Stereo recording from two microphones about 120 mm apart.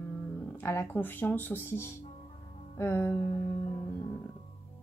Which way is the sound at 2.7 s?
20° left (ahead or behind).